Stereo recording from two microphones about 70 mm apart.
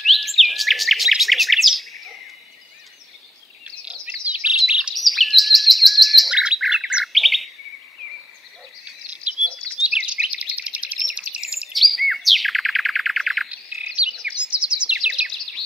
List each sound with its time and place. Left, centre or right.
0.0 s bird: centre
3.6 s bird vocalization: centre
4.6 s chirp: centre
4.9 s chirp: centre
6.3 s bird: centre
7.1 s chirp: centre
8.8 s bird: centre
11.7 s bird: centre
14.2 s bird: centre
15.2 s bird: centre